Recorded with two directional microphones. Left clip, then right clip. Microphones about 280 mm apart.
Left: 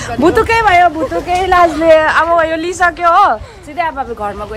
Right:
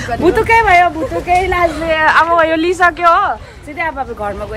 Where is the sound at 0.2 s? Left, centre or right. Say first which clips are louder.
Left 1 dB; centre.